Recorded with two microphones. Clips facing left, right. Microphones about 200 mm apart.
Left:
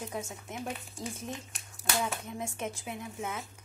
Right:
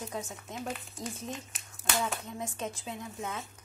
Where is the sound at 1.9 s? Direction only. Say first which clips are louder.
Even; 15° left (ahead or behind).